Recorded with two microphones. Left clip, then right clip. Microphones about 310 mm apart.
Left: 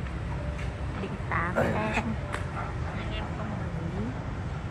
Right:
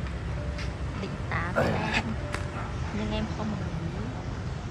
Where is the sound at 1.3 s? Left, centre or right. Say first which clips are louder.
Even; centre.